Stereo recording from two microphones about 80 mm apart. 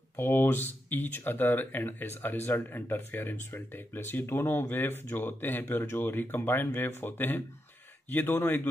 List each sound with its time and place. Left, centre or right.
0.1 s speech: left